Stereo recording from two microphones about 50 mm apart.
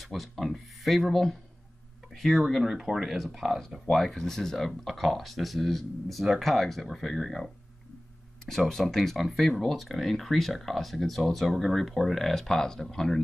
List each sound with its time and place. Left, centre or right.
0.0 s speech: centre